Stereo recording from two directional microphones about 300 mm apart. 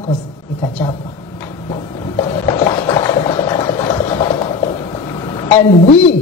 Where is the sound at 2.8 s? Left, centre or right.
Centre.